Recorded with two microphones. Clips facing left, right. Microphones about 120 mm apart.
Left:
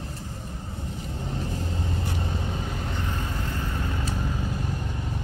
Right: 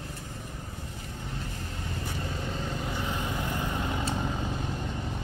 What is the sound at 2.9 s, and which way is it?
Vehicle, 15° right (ahead or behind).